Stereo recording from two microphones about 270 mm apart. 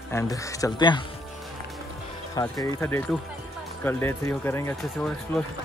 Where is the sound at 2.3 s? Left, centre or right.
Centre.